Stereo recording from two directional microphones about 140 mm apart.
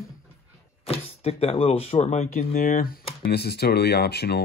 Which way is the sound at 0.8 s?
45° left (ahead or behind).